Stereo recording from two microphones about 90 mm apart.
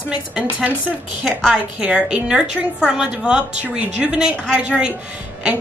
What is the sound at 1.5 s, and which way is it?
A woman's voice, 10° right (ahead or behind).